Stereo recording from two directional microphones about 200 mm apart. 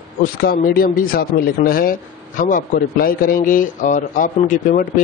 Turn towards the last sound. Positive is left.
turn(degrees=45)  # may be behind; listen again after turning